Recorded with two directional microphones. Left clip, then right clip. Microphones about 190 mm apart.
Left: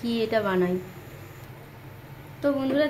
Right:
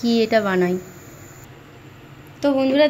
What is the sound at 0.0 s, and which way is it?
Speech, 20° right (ahead or behind).